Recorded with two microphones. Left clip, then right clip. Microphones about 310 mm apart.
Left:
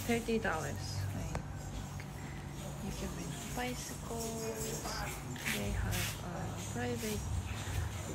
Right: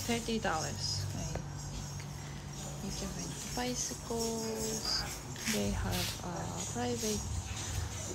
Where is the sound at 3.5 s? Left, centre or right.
Centre.